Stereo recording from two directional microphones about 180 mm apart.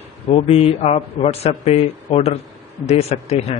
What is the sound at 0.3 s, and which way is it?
A man's voice, 35° left (ahead or behind).